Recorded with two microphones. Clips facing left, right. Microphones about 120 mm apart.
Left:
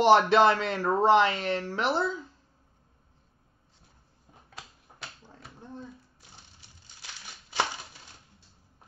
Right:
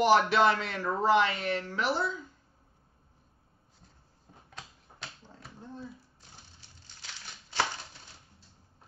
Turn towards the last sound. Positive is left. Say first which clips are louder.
# left 1 dB
turn(degrees=15)  # may be behind; listen again after turning